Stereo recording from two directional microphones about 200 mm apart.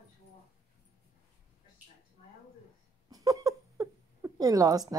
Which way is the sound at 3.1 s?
15° right (ahead or behind).